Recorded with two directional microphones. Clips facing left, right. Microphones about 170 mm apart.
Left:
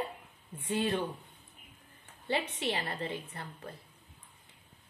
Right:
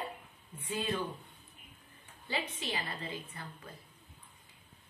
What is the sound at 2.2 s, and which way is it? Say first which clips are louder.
Speech: left 5 dB; 65° left (ahead or behind).